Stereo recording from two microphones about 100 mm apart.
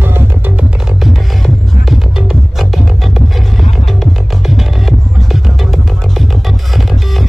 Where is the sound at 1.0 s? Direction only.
Centre (ahead or behind).